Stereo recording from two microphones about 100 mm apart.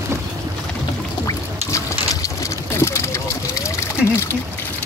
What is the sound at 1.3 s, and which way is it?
Pour, 35° left (ahead or behind).